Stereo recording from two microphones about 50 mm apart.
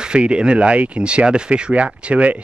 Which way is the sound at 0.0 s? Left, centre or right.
Centre.